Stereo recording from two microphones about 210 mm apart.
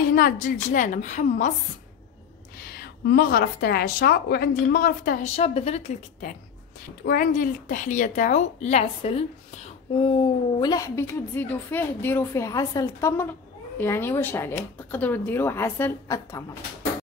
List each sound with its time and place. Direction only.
0.1 s a woman's voice: 40° left (ahead or behind)
2.8 s a woman's voice: 45° left (ahead or behind)
5.3 s a woman's voice: 30° left (ahead or behind); by 16.4 s 15° left (ahead or behind)